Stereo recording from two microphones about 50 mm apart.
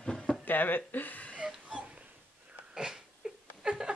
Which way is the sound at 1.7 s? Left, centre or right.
Right.